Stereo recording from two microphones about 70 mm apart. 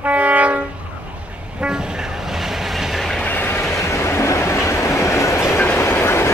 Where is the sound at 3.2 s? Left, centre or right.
Left.